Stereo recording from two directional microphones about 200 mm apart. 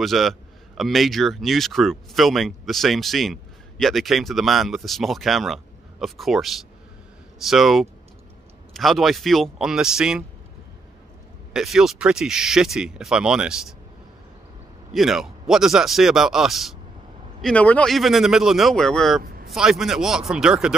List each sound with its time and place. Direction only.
0.0 s a man's voice: centre (ahead or behind)
11.5 s a man's voice: centre (ahead or behind)
15.0 s a man's voice: centre (ahead or behind)
19.2 s a sound: 50° right (ahead or behind)
19.5 s a man's voice: centre (ahead or behind)